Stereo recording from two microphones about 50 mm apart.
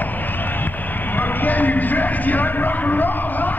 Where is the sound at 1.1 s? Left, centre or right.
Left.